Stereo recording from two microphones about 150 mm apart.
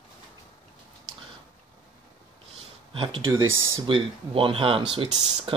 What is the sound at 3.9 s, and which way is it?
Speech, 35° right (ahead or behind).